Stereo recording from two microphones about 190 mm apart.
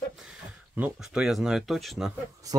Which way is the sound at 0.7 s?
5° right (ahead or behind).